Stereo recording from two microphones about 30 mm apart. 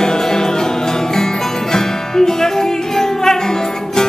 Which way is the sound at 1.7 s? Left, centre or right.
Centre.